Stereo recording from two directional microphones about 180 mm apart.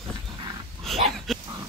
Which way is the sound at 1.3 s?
Centre (ahead or behind).